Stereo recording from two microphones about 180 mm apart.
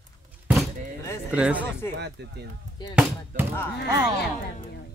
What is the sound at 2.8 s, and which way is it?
Speech, 25° left (ahead or behind).